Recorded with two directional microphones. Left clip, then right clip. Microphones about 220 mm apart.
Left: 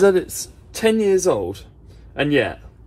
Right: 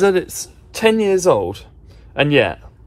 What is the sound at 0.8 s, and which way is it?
Speech, 10° left (ahead or behind).